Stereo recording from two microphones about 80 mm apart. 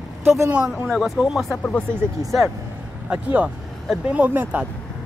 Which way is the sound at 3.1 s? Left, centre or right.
Centre.